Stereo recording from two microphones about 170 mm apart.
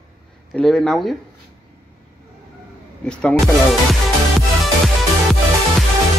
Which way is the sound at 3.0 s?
5° left (ahead or behind).